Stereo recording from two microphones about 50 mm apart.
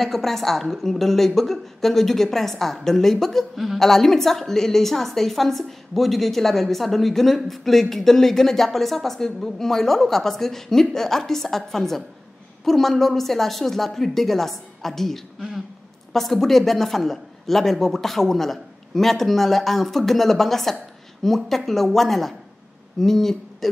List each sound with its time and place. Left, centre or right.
0.0 s a woman's voice: centre